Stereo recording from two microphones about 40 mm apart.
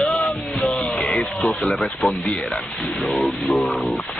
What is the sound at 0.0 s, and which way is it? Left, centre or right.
Music, left.